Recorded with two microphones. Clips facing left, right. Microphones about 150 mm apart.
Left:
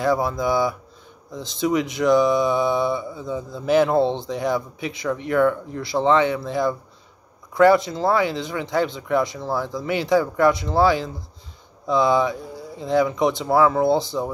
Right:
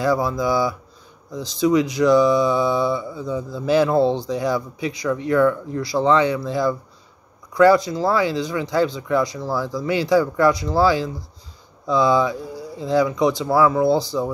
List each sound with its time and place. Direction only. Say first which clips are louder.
0.0 s speech: right 1 dB; 25° left (ahead or behind)